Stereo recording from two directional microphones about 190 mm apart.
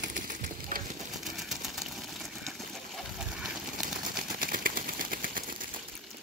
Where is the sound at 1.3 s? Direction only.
Centre (ahead or behind).